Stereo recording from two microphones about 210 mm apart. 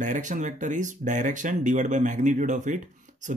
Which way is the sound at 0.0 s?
35° right (ahead or behind).